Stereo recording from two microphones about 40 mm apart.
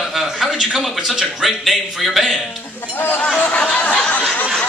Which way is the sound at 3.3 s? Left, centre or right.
Left.